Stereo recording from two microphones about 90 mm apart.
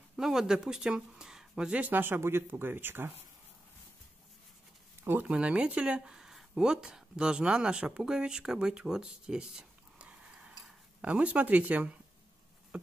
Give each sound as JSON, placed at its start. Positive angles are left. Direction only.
{"t": 0.1, "sound": "speech", "side_deg": -5}
{"t": 5.3, "sound": "speech", "side_deg": -15}
{"t": 12.7, "sound": "a sound", "side_deg": -15}